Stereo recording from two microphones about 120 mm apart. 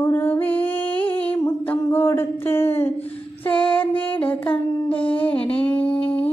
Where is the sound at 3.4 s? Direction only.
15° left (ahead or behind).